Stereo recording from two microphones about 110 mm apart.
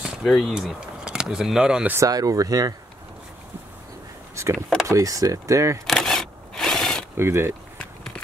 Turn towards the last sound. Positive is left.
turn(degrees=-20)  # may be behind; listen again after turning